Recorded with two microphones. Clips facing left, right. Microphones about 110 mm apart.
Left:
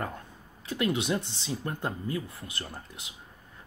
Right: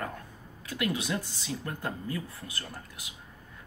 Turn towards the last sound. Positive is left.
turn(degrees=25)  # may be behind; listen again after turning